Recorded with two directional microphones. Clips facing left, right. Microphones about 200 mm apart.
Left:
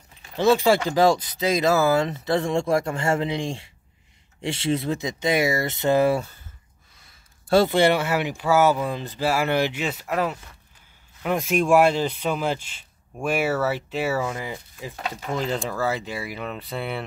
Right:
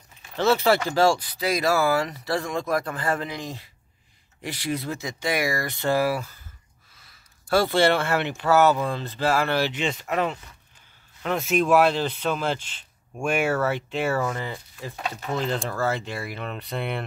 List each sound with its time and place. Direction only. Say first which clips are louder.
0.4 s speech: left 2 dB; 15° left (ahead or behind)
7.4 s speech: left 2 dB; 20° left (ahead or behind); by 17.0 s 5° left (ahead or behind)